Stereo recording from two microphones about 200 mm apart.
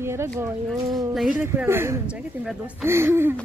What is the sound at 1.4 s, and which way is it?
A woman's voice, 10° right (ahead or behind).